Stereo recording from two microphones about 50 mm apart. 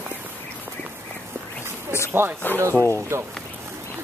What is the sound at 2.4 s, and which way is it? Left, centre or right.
Speech, left.